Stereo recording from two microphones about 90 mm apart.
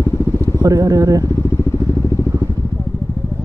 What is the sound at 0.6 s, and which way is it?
Speech, 40° right (ahead or behind).